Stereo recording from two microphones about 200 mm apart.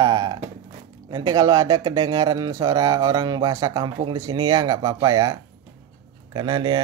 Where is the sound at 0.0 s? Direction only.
20° right (ahead or behind).